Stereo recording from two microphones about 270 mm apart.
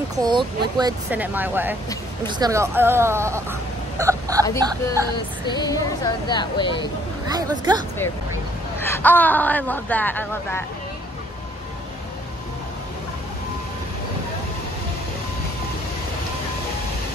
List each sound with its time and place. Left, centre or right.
0.1 s speech: centre
5.5 s speech: centre
7.2 s speech: centre
8.7 s speech: centre